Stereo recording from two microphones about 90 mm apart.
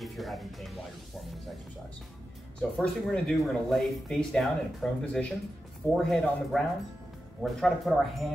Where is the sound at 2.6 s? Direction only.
5° left (ahead or behind).